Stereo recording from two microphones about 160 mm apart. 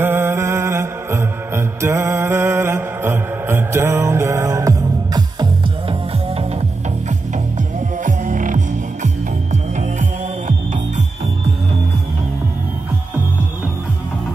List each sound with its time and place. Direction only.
0.0 s music: 15° right (ahead or behind)
8.0 s music: 55° right (ahead or behind)